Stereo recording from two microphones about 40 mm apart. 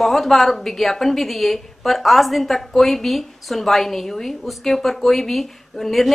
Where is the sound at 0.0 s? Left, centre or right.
Centre.